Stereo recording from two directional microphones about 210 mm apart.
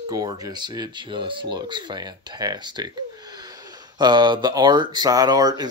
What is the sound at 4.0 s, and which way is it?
Speech, 20° right (ahead or behind).